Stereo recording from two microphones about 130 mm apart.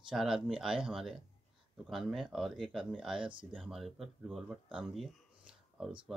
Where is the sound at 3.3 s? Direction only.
40° right (ahead or behind).